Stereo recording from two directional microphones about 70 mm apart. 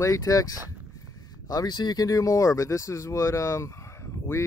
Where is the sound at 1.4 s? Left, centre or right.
Left.